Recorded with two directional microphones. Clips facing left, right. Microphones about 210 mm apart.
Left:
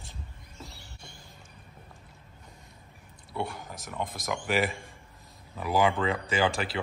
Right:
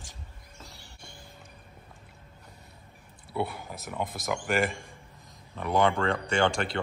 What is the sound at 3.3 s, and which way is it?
Speech, 5° right (ahead or behind).